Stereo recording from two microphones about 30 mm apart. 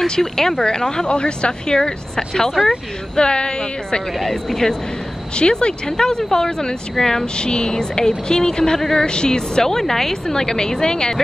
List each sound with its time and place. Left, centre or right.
0.2 s speech: centre; by 1.8 s left
1.8 s speech: left
4.2 s speech: centre
5.3 s speech: left
7.3 s speech: left
9.6 s speech: centre